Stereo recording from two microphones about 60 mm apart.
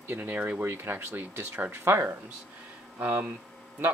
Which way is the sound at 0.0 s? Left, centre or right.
Right.